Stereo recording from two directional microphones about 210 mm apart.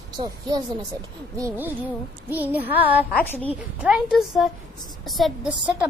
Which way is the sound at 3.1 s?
5° left (ahead or behind).